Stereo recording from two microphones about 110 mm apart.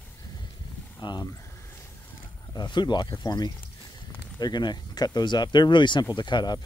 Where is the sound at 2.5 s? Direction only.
40° left (ahead or behind).